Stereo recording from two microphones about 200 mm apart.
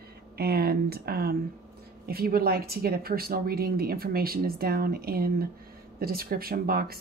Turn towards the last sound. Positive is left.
turn(degrees=-50)  # may be behind; listen again after turning